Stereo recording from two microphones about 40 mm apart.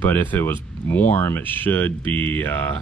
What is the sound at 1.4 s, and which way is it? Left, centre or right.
Speech, left.